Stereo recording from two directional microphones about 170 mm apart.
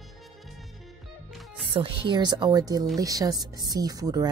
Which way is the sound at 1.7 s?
30° right (ahead or behind).